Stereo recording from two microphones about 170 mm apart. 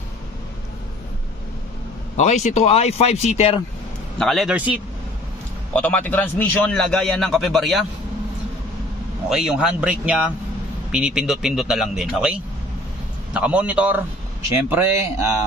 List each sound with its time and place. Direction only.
2.1 s speech: 45° left (ahead or behind)
4.2 s a man's voice: centre (ahead or behind)
5.8 s a man's voice: 10° left (ahead or behind)
9.3 s a man's voice: 5° right (ahead or behind)